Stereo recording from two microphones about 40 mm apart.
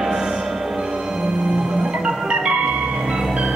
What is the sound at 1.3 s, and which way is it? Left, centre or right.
Music, centre.